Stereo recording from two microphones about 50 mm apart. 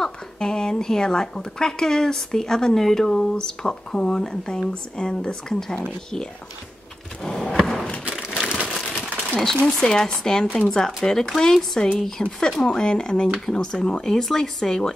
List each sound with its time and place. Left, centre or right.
0.0 s a woman's voice: centre
7.2 s a sound: centre
8.3 s crumpling: centre
9.3 s a woman's voice: centre